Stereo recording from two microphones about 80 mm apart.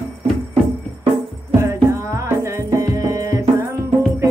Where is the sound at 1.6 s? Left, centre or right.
Right.